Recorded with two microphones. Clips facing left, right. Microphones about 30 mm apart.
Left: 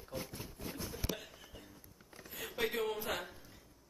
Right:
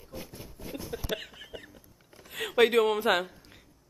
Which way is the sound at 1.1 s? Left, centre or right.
Right.